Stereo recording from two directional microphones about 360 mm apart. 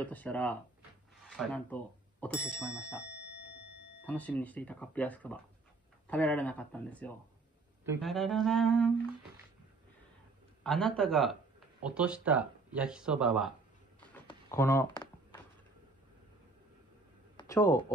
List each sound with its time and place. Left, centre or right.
0.0 s speech: centre
3.1 s a sound: right
4.0 s speech: centre
10.6 s speech: centre
13.9 s a sound: centre
17.4 s speech: centre